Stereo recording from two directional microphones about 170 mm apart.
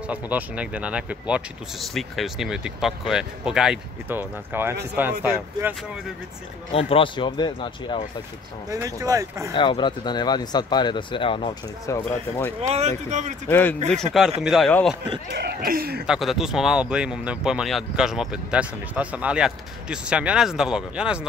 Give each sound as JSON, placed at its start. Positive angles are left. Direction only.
{"t": 0.1, "sound": "speech", "side_deg": -10}
{"t": 6.7, "sound": "speech", "side_deg": 35}
{"t": 8.6, "sound": "speech", "side_deg": -20}
{"t": 9.5, "sound": "speech", "side_deg": 25}
{"t": 11.8, "sound": "speech", "side_deg": 15}
{"t": 12.6, "sound": "speech", "side_deg": -40}
{"t": 13.5, "sound": "speech", "side_deg": 10}
{"t": 14.4, "sound": "speech", "side_deg": 0}
{"t": 15.3, "sound": "speech", "side_deg": -70}
{"t": 16.1, "sound": "speech", "side_deg": 0}